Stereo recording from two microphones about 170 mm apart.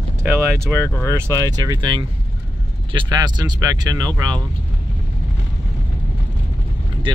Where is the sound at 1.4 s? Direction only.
20° right (ahead or behind).